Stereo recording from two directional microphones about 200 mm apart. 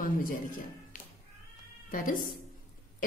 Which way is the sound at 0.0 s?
45° left (ahead or behind).